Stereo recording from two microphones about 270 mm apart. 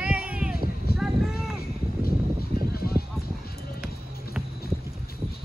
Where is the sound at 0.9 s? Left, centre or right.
Centre.